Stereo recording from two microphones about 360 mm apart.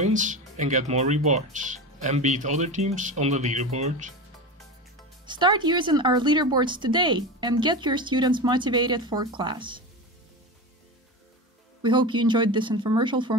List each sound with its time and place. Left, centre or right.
0.0 s speech: right
5.2 s speech: centre
11.8 s speech: centre